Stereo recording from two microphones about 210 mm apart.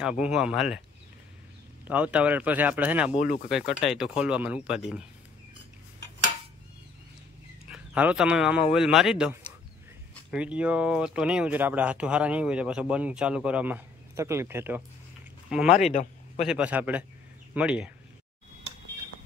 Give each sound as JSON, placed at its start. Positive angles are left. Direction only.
{"t": 0.0, "sound": "speech", "side_deg": -5}
{"t": 1.9, "sound": "speech", "side_deg": -5}
{"t": 3.2, "sound": "speech", "side_deg": 35}
{"t": 3.4, "sound": "speech", "side_deg": -5}
{"t": 7.7, "sound": "speech", "side_deg": -5}
{"t": 15.9, "sound": "a man's voice", "side_deg": 35}
{"t": 16.4, "sound": "speech", "side_deg": -5}